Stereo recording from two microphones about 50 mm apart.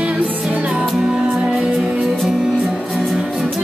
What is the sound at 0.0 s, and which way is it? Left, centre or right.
Music, right.